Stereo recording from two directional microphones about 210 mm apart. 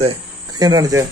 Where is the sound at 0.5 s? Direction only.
20° right (ahead or behind).